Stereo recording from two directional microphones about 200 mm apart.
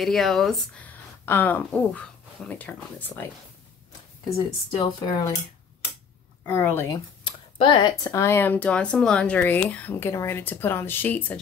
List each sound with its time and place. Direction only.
0.0 s speech: centre (ahead or behind)
4.6 s speech: 20° left (ahead or behind)
6.4 s speech: 10° left (ahead or behind)
7.5 s speech: 25° left (ahead or behind); by 11.3 s 10° left (ahead or behind)